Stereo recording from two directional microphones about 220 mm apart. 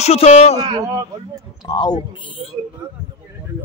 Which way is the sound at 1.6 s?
20° left (ahead or behind).